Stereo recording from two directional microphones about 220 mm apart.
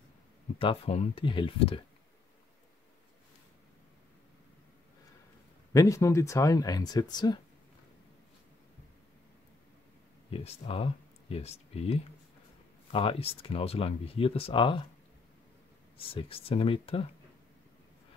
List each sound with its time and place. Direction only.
0.6 s speech: 25° left (ahead or behind)
5.7 s speech: 15° left (ahead or behind)
10.3 s speech: 25° left (ahead or behind)
16.0 s speech: 25° left (ahead or behind)